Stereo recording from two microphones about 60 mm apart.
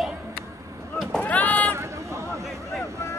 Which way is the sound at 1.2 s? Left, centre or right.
Left.